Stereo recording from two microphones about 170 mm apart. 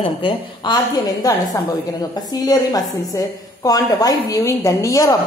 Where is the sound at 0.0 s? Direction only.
30° left (ahead or behind).